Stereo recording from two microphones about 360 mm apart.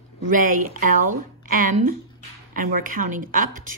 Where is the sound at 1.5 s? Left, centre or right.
Right.